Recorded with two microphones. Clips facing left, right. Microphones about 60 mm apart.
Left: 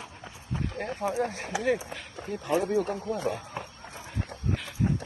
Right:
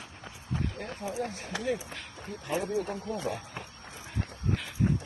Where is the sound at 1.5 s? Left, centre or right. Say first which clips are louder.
Left 4 dB; centre.